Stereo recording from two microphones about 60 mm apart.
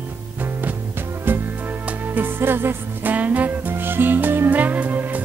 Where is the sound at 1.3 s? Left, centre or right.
Right.